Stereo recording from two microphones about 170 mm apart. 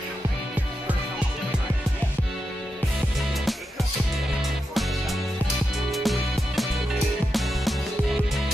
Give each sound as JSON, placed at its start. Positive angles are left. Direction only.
{"t": 5.9, "sound": "music", "side_deg": 0}